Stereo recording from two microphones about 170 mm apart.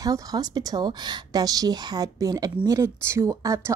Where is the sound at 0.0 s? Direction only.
20° right (ahead or behind).